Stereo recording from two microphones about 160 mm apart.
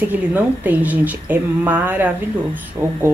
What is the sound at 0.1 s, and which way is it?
A woman's voice, 10° right (ahead or behind).